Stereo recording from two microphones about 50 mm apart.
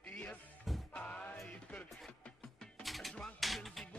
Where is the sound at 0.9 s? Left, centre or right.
Left.